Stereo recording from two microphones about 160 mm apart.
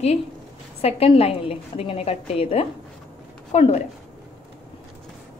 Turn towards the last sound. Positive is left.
turn(degrees=45)  # may be behind; listen again after turning